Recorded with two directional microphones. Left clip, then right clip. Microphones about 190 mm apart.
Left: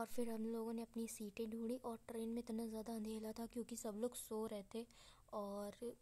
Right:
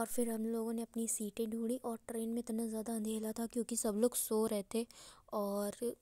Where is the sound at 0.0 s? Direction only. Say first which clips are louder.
Right 8 dB; 20° right (ahead or behind).